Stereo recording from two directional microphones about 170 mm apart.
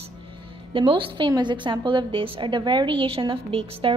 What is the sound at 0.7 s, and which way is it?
A woman's voice, 30° right (ahead or behind).